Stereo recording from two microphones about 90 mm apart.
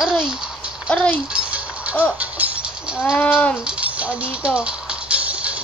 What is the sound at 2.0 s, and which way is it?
Speech, 15° right (ahead or behind).